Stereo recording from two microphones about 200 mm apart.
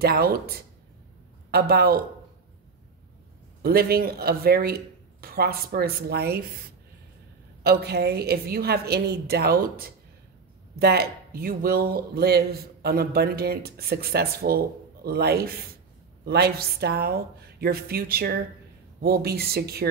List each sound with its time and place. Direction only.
0.0 s a man's voice: 50° right (ahead or behind)
3.6 s a man's voice: 50° right (ahead or behind)
7.6 s a man's voice: 55° right (ahead or behind)